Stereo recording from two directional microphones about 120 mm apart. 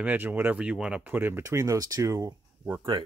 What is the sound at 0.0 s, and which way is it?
Speech, 15° right (ahead or behind).